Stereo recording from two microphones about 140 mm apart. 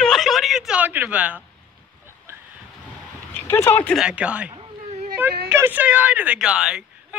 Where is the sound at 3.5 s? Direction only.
15° left (ahead or behind).